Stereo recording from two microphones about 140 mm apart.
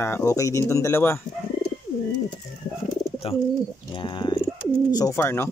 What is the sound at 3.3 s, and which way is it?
Bird, 45° left (ahead or behind).